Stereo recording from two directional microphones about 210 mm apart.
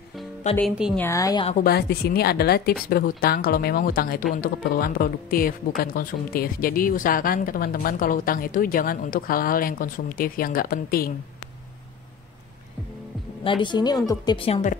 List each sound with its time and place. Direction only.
0.6 s a woman's voice: centre (ahead or behind)
0.9 s a woman's voice: 15° left (ahead or behind)
1.5 s speech: 45° left (ahead or behind)
13.4 s a woman's voice: 25° left (ahead or behind)